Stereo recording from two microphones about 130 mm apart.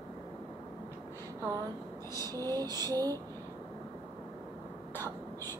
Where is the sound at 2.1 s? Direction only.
30° right (ahead or behind).